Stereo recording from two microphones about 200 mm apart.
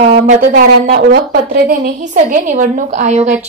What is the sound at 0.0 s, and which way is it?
Speech, 35° right (ahead or behind).